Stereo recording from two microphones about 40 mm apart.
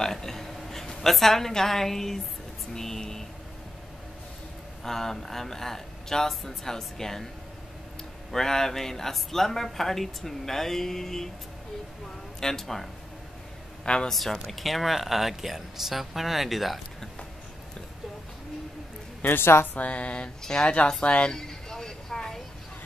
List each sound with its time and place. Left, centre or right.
0.0 s a woman's voice: centre
4.8 s speech: centre
8.3 s speech: centre
12.4 s speech: centre
13.8 s speech: left
14.1 s speech: centre
19.2 s a woman's voice: left
19.7 s speech: left
21.3 s a sound: centre